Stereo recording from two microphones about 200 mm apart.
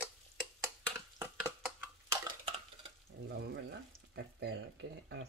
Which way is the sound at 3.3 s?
55° right (ahead or behind).